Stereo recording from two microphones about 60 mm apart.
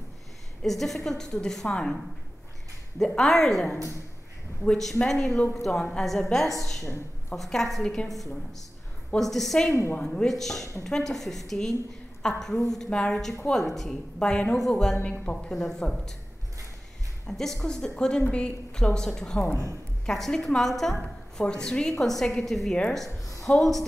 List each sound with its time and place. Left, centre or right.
0.6 s a woman's voice: centre
3.0 s a woman's voice: centre
5.0 s a woman's voice: centre
15.0 s a woman's voice: left
15.3 s a woman's voice: centre
17.3 s a woman's voice: centre